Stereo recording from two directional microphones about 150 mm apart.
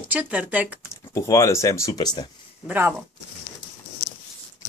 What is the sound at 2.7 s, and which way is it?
Speech, 15° right (ahead or behind).